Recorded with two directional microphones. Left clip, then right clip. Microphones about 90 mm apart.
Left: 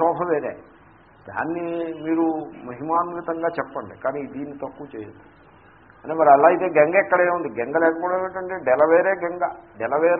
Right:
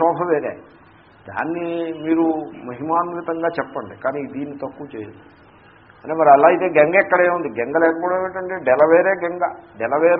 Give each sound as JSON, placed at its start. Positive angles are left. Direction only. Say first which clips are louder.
{"t": 0.3, "sound": "a man's voice", "louder": "right 3 dB", "side_deg": 35}
{"t": 6.2, "sound": "a man's voice", "louder": "right 2 dB", "side_deg": 40}
{"t": 7.7, "sound": "a man's voice", "louder": "right 3 dB", "side_deg": 40}